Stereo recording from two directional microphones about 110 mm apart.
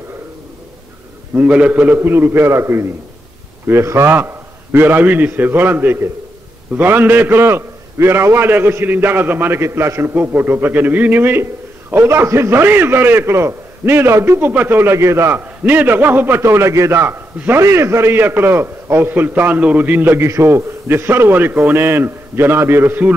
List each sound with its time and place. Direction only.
1.3 s a man's voice: 15° right (ahead or behind)